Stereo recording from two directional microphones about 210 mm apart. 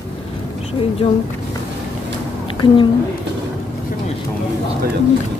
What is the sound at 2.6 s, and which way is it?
Speech, 25° left (ahead or behind).